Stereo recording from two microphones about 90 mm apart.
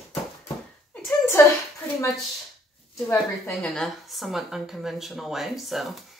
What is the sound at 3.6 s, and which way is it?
Speech, 5° left (ahead or behind).